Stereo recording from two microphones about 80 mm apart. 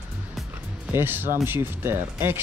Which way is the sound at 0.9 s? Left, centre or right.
Right.